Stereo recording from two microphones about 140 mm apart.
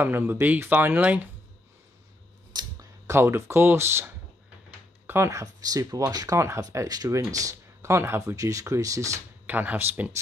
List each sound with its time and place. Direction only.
0.0 s speech: 15° right (ahead or behind)
2.5 s a sound: 20° right (ahead or behind)
5.0 s speech: 20° right (ahead or behind)